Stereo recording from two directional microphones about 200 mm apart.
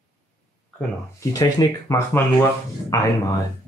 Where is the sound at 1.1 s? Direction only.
15° left (ahead or behind).